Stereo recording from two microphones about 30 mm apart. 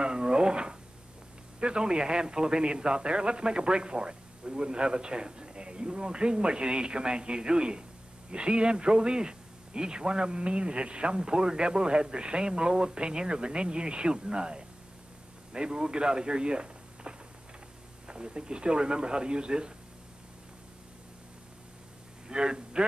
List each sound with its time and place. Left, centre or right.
0.0 s a sound: right
1.6 s speech: right
22.3 s speech: right